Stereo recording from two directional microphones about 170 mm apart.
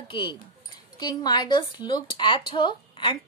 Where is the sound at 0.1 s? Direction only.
30° left (ahead or behind).